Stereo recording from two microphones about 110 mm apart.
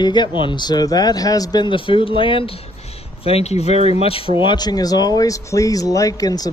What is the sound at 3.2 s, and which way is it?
Speech, 65° left (ahead or behind).